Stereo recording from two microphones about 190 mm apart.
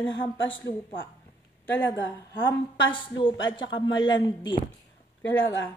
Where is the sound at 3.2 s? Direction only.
25° left (ahead or behind).